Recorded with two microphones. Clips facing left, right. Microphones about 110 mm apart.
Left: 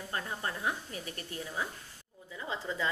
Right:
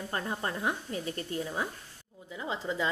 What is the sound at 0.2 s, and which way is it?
Speech, 25° right (ahead or behind).